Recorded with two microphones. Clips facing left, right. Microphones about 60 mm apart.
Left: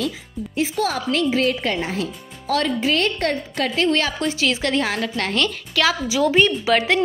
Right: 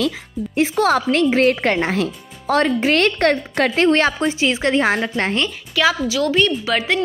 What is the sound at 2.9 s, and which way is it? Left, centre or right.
A woman's voice, right.